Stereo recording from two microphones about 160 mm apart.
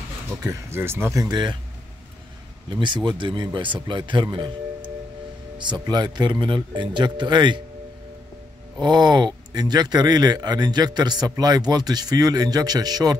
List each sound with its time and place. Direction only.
0.3 s speech: 20° right (ahead or behind)
2.8 s speech: 30° right (ahead or behind)
8.8 s speech: 30° right (ahead or behind)